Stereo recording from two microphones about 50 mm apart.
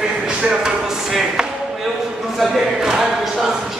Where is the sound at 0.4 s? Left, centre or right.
Right.